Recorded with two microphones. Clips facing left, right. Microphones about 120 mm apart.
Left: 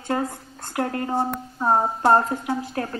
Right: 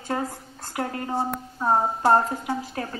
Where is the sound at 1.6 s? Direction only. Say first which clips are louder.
Left 2 dB; 15° left (ahead or behind).